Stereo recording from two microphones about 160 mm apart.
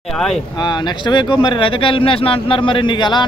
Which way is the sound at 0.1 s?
5° left (ahead or behind).